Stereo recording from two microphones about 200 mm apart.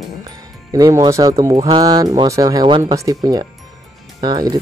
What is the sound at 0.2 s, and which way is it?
Speech, 20° right (ahead or behind).